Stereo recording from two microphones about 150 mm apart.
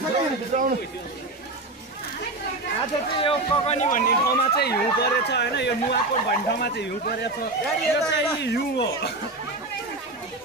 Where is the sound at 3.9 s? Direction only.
70° left (ahead or behind); by 7.3 s 90° left.